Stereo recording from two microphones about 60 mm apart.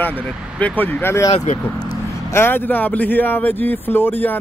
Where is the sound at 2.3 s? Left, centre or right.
Left.